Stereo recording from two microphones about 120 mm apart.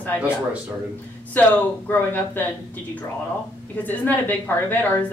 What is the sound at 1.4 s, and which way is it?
A woman's voice, 15° left (ahead or behind).